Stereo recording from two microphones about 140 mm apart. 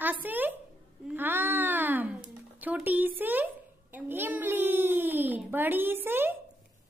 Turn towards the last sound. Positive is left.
turn(degrees=-15)  # may be behind; listen again after turning